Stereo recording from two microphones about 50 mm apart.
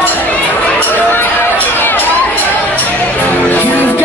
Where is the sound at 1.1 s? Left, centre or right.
Left.